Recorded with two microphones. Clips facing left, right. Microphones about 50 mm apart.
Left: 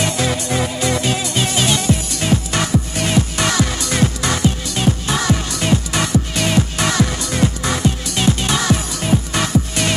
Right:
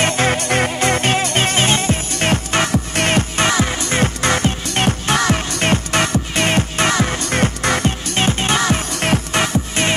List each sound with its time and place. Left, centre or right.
0.0 s music: right
3.4 s music: right
9.0 s music: right
9.4 s music: right